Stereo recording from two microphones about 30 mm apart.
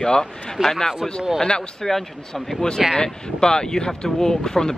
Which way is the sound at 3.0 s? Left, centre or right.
Left.